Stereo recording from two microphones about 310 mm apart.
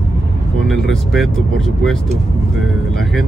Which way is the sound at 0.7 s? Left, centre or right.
Centre.